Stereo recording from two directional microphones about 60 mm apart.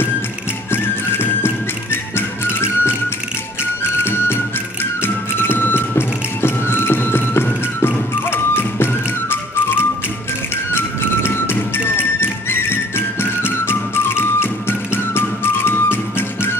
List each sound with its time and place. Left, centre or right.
0.7 s music: left
3.9 s music: left